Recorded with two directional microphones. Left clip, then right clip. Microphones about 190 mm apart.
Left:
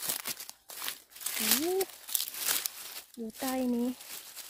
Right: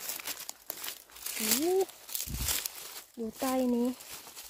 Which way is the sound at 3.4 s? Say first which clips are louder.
Right 3 dB; 15° right (ahead or behind).